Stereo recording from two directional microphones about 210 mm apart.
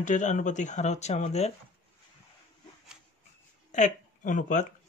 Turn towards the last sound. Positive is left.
turn(degrees=35)  # may be behind; listen again after turning